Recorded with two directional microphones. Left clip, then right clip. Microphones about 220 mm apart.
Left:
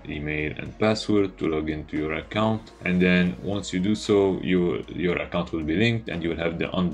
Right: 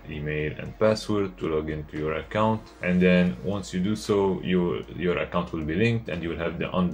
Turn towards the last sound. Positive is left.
turn(degrees=30)  # may be behind; listen again after turning